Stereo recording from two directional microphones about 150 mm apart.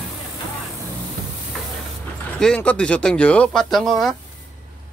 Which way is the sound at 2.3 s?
5° left (ahead or behind).